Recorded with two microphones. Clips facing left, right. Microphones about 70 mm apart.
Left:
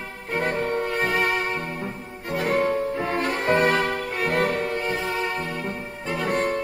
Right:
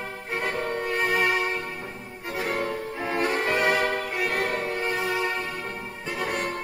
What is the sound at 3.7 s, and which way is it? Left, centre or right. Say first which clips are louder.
Music: left 1 dB; right.